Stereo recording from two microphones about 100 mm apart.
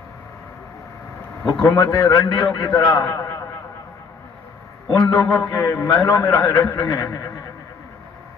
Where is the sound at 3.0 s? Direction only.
25° left (ahead or behind).